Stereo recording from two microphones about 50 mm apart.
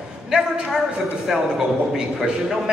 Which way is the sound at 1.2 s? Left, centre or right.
Centre.